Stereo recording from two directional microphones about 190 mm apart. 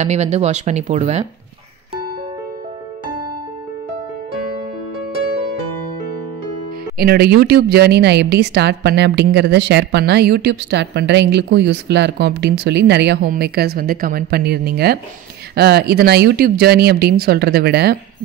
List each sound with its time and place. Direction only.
0.0 s speech: 35° right (ahead or behind)
7.0 s a woman's voice: 55° right (ahead or behind)